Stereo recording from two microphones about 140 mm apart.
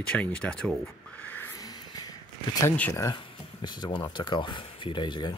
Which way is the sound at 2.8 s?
20° left (ahead or behind).